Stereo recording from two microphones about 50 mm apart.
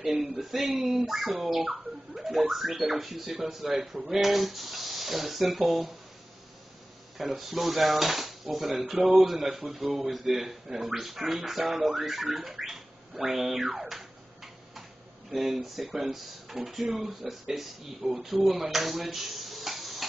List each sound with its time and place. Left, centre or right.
0.4 s a man's voice: centre
5.6 s speech: right
7.2 s speech: centre
9.5 s speech: right
9.9 s speech: centre
12.5 s a sound: centre
13.2 s music: centre
15.3 s speech: centre